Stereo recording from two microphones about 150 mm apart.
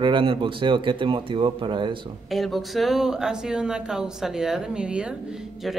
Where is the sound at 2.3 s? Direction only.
Centre (ahead or behind).